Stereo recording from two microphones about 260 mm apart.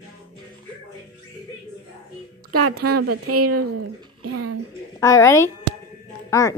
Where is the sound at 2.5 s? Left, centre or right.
Right.